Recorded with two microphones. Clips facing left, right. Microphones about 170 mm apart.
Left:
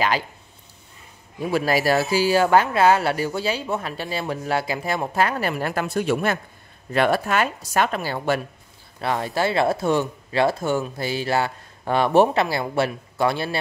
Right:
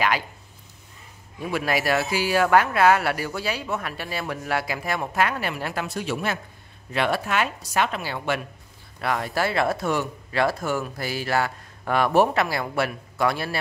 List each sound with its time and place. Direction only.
1.4 s a woman's voice: 30° left (ahead or behind)
9.0 s speech: 25° left (ahead or behind)